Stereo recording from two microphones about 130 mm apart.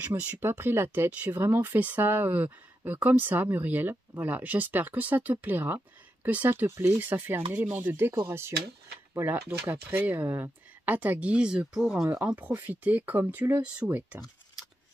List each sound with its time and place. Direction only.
0.1 s speech: 15° right (ahead or behind)